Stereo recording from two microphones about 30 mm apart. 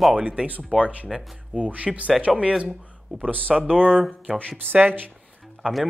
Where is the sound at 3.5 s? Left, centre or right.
Left.